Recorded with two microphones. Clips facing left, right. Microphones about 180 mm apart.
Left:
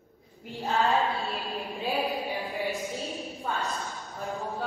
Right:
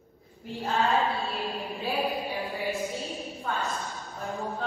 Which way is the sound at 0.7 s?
Centre (ahead or behind).